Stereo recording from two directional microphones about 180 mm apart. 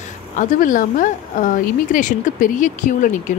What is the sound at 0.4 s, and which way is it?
Speech, 45° left (ahead or behind).